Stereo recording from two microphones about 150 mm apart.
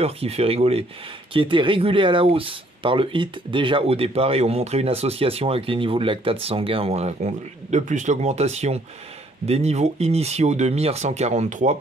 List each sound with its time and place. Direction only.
0.0 s speech: 45° right (ahead or behind)